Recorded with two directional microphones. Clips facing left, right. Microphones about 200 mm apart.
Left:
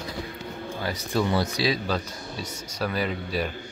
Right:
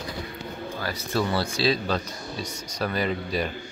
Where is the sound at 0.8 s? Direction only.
20° left (ahead or behind).